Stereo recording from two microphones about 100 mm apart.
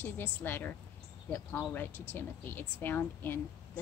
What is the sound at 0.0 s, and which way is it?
Speech, 20° left (ahead or behind).